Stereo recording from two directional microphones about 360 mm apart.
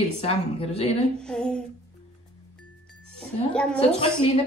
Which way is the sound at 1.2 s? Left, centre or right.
Centre.